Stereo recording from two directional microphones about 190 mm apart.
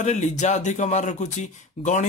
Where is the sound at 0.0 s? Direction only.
35° left (ahead or behind).